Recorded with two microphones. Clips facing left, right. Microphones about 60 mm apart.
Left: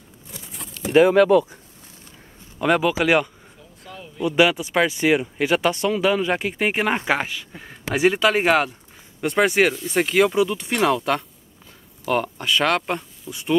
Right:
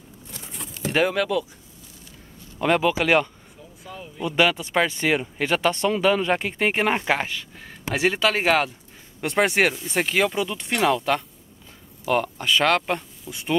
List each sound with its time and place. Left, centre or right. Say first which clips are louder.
0.8 s speech: left 7 dB; centre
1.1 s speech: left 9 dB; left
2.6 s speech: left 1 dB; centre
3.8 s speech: left 4 dB; centre
4.3 s speech: left 3 dB; centre